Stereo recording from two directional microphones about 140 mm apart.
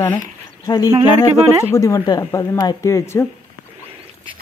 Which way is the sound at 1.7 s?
25° left (ahead or behind).